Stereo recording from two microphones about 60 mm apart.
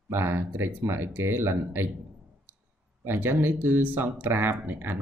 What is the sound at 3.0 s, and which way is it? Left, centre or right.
Speech, right.